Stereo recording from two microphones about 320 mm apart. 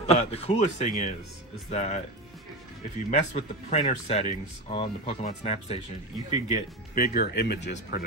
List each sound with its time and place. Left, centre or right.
0.0 s speech: centre
3.1 s speech: centre